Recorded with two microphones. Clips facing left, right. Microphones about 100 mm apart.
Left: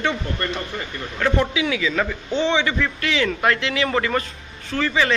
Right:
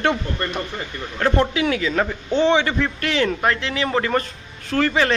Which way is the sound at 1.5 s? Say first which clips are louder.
Right 2 dB; 45° right (ahead or behind).